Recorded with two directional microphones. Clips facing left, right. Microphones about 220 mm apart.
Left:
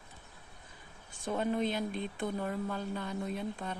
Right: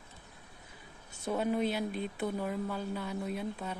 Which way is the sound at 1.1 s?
10° right (ahead or behind).